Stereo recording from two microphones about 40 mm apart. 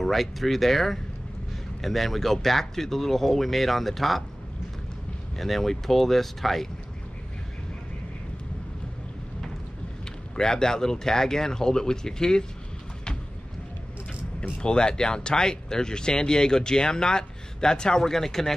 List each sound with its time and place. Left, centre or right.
0.0 s speech: centre
5.4 s speech: centre
10.3 s speech: centre
14.6 s speech: left